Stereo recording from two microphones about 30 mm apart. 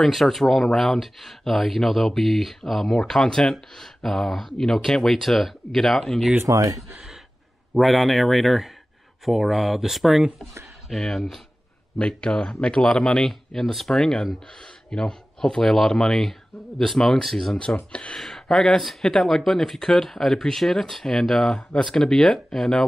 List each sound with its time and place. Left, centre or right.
0.0 s speech: centre
3.3 s speech: centre
7.7 s speech: centre
11.0 s speech: centre
12.0 s speech: left
15.6 s speech: centre
17.7 s speech: left
18.1 s speech: centre